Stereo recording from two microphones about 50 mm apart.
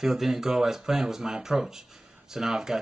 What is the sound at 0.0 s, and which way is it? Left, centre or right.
Speech, centre.